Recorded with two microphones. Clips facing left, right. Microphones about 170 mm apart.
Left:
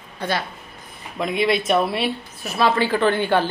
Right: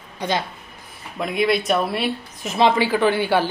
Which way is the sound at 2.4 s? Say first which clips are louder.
Right 2 dB; 20° right (ahead or behind).